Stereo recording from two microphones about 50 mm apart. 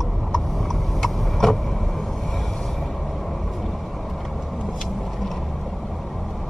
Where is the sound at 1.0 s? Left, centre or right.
Centre.